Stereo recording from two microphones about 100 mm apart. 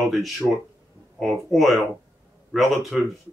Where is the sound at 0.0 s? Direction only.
Centre (ahead or behind).